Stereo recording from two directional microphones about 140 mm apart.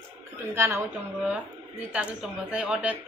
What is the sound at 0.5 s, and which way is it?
A woman's voice, 15° right (ahead or behind).